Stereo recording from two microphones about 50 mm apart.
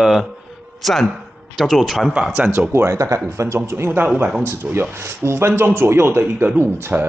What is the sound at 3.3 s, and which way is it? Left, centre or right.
Speech, right.